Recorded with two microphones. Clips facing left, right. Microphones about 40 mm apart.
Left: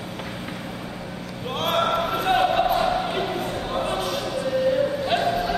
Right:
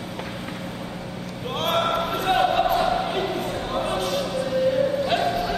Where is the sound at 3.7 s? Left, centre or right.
Centre.